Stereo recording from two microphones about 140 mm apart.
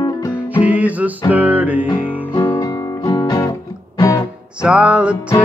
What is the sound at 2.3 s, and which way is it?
Guitar, 15° left (ahead or behind).